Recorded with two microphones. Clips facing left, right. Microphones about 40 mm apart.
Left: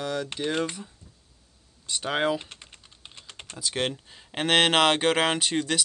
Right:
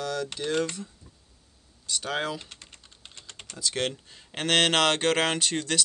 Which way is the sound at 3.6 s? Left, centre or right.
Centre.